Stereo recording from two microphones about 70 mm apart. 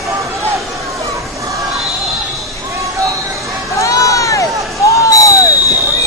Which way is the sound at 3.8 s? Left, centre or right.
Left.